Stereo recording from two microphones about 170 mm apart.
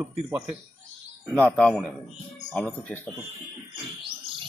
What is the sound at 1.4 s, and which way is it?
A man's voice, 10° left (ahead or behind).